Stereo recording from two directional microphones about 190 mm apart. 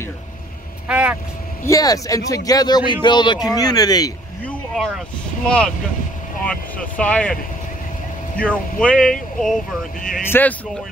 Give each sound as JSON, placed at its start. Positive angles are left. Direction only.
{"t": 0.8, "sound": "speech", "side_deg": -5}
{"t": 1.6, "sound": "a man's voice", "side_deg": 20}
{"t": 4.5, "sound": "speech", "side_deg": 0}
{"t": 6.4, "sound": "speech", "side_deg": 5}
{"t": 8.4, "sound": "speech", "side_deg": 5}